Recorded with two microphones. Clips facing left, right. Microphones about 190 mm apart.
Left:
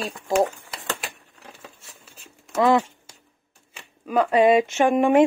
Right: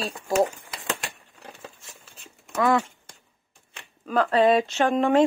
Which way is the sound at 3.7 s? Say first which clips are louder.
Left 2 dB; 10° left (ahead or behind).